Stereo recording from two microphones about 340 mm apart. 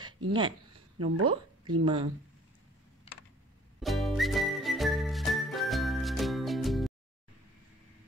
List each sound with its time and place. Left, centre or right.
0.3 s speech: centre
0.9 s speech: right
3.8 s whistling: centre